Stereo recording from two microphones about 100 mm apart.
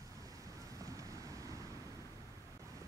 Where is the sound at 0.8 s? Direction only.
35° right (ahead or behind).